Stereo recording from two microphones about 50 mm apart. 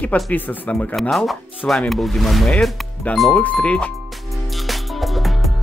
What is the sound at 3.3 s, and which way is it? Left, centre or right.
Speech, left.